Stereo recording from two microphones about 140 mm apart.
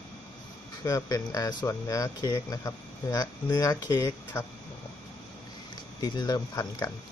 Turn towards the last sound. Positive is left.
turn(degrees=25)  # may be behind; listen again after turning